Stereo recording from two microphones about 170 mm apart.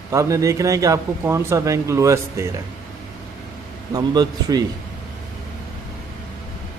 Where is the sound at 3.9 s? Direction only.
25° right (ahead or behind).